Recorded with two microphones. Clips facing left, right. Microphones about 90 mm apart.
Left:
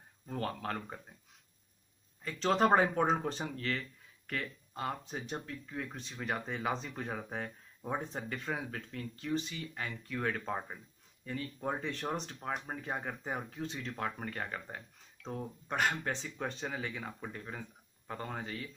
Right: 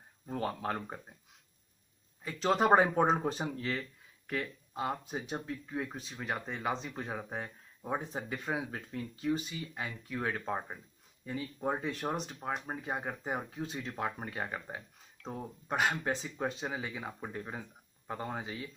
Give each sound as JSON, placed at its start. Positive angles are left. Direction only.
{"t": 0.3, "sound": "speech", "side_deg": -15}
{"t": 2.2, "sound": "speech", "side_deg": -5}
{"t": 5.9, "sound": "speech", "side_deg": -5}